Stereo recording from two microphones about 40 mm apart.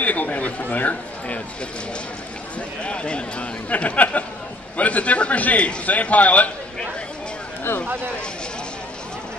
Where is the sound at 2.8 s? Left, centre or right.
Left.